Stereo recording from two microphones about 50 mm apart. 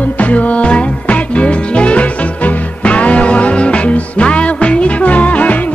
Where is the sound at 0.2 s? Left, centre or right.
Left.